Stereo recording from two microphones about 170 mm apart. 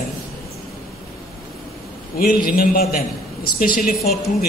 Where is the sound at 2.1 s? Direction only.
60° left (ahead or behind).